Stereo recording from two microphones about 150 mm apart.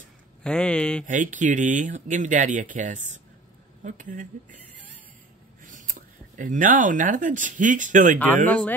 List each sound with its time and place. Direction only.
0.4 s speech: 5° left (ahead or behind)
1.0 s speech: 60° right (ahead or behind)
5.6 s speech: 60° right (ahead or behind)
8.5 s speech: 10° left (ahead or behind)